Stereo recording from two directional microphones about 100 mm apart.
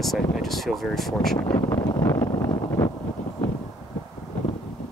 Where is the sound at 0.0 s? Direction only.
Centre (ahead or behind).